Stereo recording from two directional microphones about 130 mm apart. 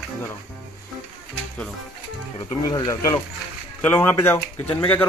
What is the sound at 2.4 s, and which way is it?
Speech, 30° left (ahead or behind).